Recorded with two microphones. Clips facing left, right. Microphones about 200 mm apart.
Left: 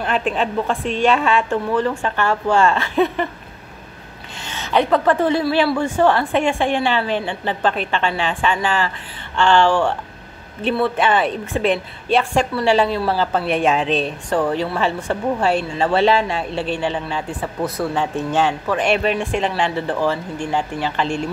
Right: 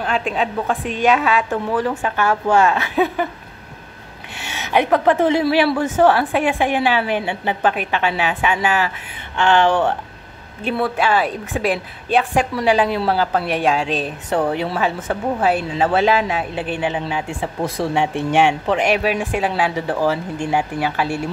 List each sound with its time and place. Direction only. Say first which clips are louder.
0.0 s a woman's voice: left 1 dB; centre (ahead or behind)
4.5 s a woman's voice: even; 10° right (ahead or behind)
9.4 s speech: even; 20° right (ahead or behind)
10.8 s speech: even; centre (ahead or behind)
12.4 s a woman's voice: left 1 dB; 15° right (ahead or behind)
13.3 s speech: left 1 dB; centre (ahead or behind)
14.4 s a woman's voice: even; 15° right (ahead or behind)
14.8 s a woman's voice: even; 5° right (ahead or behind)